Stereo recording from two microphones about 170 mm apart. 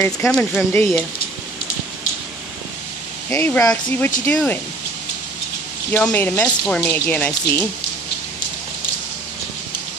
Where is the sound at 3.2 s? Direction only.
10° left (ahead or behind).